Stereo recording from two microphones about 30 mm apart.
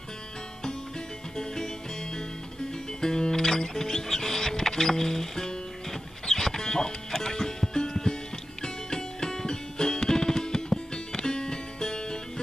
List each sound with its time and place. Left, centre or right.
1.3 s music: left
3.0 s music: centre